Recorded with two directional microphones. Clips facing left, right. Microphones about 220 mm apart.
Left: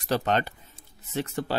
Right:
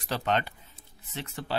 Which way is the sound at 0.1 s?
40° left (ahead or behind).